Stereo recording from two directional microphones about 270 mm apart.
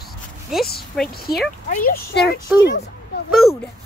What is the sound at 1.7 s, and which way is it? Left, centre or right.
Speech, left.